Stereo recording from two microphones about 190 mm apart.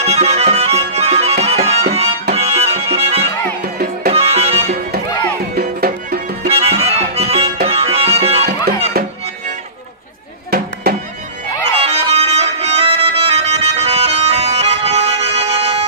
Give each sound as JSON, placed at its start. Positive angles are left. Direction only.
{"t": 0.0, "sound": "music", "side_deg": -35}
{"t": 5.6, "sound": "music", "side_deg": -50}
{"t": 6.4, "sound": "music", "side_deg": -30}
{"t": 10.5, "sound": "music", "side_deg": -55}
{"t": 11.7, "sound": "music", "side_deg": -35}